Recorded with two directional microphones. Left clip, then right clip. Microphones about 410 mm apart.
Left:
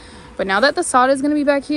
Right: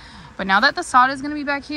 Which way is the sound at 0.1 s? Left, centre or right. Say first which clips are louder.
Even; centre.